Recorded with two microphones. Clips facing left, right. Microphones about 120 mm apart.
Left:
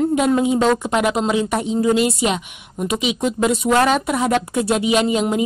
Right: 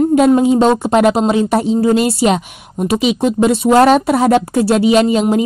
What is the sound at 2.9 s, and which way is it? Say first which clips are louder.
A woman's voice: right 7 dB; 30° right (ahead or behind).